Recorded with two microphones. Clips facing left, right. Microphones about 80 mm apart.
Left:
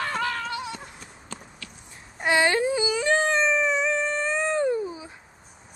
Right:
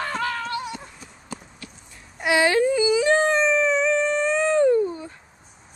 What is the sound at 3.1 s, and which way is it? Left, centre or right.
Dog, centre.